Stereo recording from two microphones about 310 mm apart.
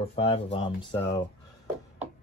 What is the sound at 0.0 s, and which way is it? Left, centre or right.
Speech, centre.